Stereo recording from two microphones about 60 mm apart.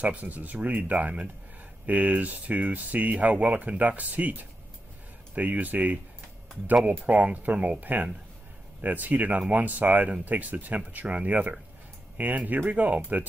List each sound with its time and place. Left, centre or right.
0.0 s speech: right